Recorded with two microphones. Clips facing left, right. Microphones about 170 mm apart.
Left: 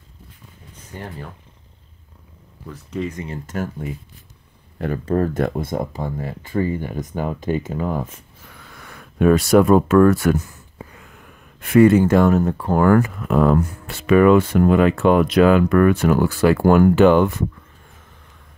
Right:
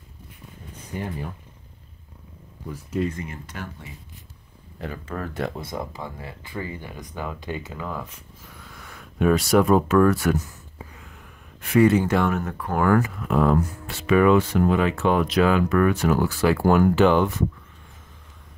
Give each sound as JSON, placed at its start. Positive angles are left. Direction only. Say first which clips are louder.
{"t": 0.9, "sound": "speech", "louder": "right 3 dB", "side_deg": -10}
{"t": 2.7, "sound": "speech", "louder": "right 1 dB", "side_deg": -5}
{"t": 3.4, "sound": "speech", "louder": "left 11 dB", "side_deg": 45}
{"t": 5.0, "sound": "speech", "louder": "left 15 dB", "side_deg": 35}
{"t": 5.4, "sound": "speech", "louder": "left 7 dB", "side_deg": 50}
{"t": 8.6, "sound": "speech", "louder": "left 3 dB", "side_deg": 60}
{"t": 11.6, "sound": "speech", "louder": "left 5 dB", "side_deg": 55}
{"t": 12.8, "sound": "speech", "louder": "left 4 dB", "side_deg": 50}